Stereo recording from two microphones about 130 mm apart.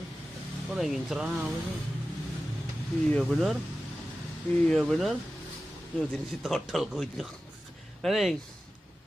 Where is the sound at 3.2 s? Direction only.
Centre (ahead or behind).